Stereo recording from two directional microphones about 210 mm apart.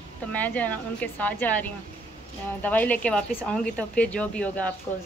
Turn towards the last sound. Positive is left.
turn(degrees=5)  # may be behind; listen again after turning